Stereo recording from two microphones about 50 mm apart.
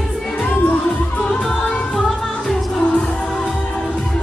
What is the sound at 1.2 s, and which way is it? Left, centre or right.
Music, centre.